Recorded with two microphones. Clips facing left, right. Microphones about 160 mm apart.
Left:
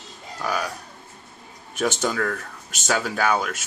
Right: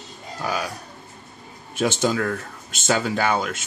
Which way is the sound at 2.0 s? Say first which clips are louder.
Right 2 dB; 5° right (ahead or behind).